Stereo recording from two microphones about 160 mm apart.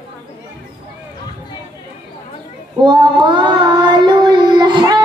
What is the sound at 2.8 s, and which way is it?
Child singing, 30° right (ahead or behind).